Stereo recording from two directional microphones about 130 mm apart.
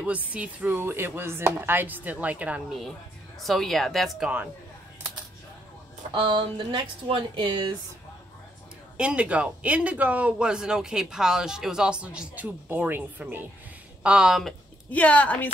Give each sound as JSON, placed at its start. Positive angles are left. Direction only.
{"t": 0.0, "sound": "a man's voice", "side_deg": -10}
{"t": 3.3, "sound": "speech", "side_deg": 0}
{"t": 6.1, "sound": "speech", "side_deg": -35}
{"t": 8.9, "sound": "a man's voice", "side_deg": -10}
{"t": 14.9, "sound": "a woman's voice", "side_deg": 10}